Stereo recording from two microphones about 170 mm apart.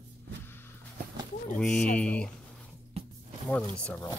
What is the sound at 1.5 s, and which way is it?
Speech, 5° left (ahead or behind).